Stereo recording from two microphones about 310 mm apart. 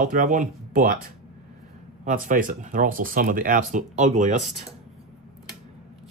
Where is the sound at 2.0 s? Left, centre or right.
Right.